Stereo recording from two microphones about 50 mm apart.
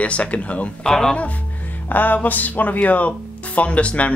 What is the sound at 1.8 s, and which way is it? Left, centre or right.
Speech, left.